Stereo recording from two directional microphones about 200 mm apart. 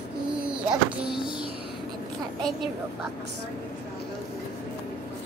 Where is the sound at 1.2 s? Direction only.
25° left (ahead or behind).